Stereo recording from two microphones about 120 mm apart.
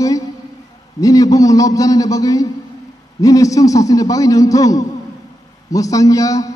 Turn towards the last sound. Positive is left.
turn(degrees=30)  # may be behind; listen again after turning